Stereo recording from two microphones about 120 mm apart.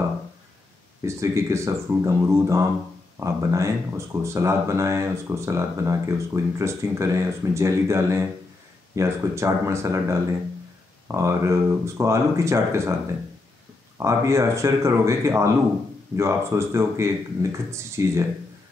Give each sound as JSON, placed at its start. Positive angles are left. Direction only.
{"t": 1.0, "sound": "speech", "side_deg": -25}